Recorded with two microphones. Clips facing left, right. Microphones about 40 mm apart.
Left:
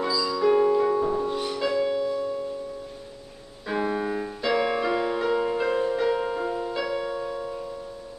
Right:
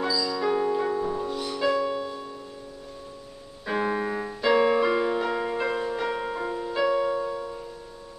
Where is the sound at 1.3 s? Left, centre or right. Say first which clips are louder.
Left 2 dB; left.